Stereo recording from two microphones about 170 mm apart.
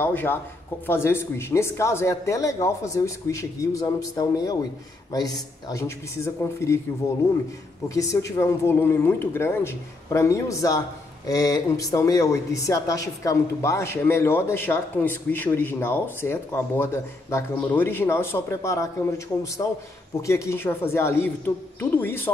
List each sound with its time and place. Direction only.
0.0 s a woman's voice: 10° left (ahead or behind)